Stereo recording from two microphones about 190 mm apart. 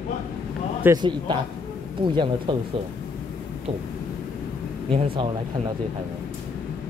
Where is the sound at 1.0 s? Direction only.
25° right (ahead or behind).